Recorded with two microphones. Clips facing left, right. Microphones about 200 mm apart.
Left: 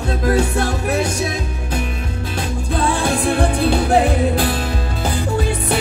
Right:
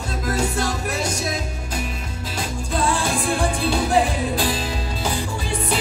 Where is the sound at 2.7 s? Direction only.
60° left (ahead or behind).